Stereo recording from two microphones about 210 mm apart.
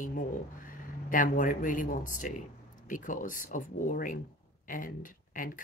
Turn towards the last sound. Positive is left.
turn(degrees=40)  # may be behind; listen again after turning